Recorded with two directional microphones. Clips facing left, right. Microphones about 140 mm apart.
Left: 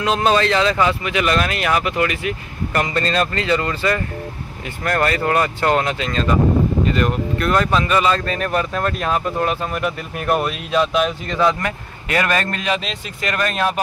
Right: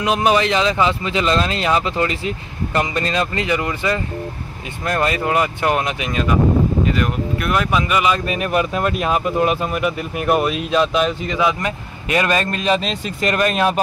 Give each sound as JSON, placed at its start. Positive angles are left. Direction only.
{"t": 0.0, "sound": "a man's voice", "side_deg": -15}
{"t": 11.6, "sound": "a man's voice", "side_deg": -20}
{"t": 12.7, "sound": "speech", "side_deg": -35}
{"t": 13.3, "sound": "a man's voice", "side_deg": -20}